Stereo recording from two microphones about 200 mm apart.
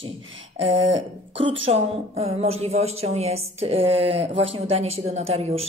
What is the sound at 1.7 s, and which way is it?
A woman's voice, 30° right (ahead or behind).